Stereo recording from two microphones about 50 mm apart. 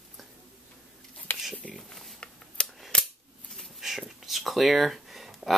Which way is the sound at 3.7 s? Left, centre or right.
Centre.